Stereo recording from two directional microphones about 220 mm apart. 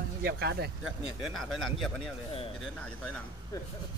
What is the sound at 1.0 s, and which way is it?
Speech, centre (ahead or behind).